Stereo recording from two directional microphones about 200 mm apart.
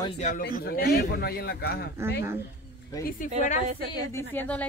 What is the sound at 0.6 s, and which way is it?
A man's voice, 50° left (ahead or behind).